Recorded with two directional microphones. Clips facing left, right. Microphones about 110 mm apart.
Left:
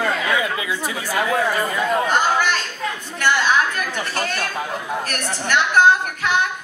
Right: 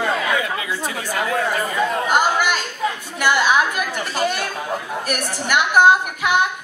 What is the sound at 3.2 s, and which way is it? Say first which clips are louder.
A woman's voice: right 1 dB; 10° right (ahead or behind).